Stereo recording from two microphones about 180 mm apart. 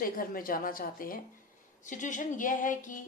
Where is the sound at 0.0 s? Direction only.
50° left (ahead or behind).